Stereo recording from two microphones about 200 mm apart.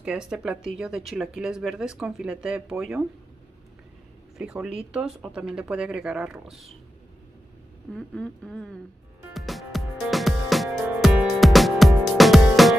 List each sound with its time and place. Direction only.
0.0 s speech: 5° right (ahead or behind)
4.4 s speech: 5° right (ahead or behind)
7.9 s speech: 5° left (ahead or behind)
9.3 s music: centre (ahead or behind)